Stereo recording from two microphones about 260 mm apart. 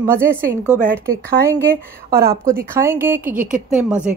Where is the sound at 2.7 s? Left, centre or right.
Centre.